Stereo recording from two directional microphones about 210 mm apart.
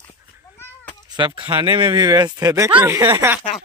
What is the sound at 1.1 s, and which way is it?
Speech, 25° right (ahead or behind).